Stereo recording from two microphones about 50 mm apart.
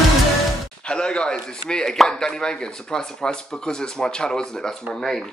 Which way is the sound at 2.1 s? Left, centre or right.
Centre.